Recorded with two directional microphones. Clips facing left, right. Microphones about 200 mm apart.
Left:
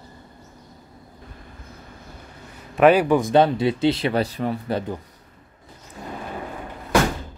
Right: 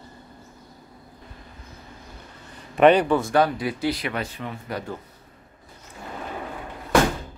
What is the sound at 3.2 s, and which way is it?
Speech, 25° left (ahead or behind).